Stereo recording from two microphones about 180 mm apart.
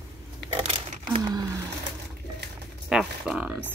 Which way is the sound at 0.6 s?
35° right (ahead or behind).